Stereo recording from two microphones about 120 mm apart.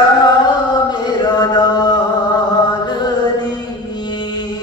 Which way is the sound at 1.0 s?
35° left (ahead or behind).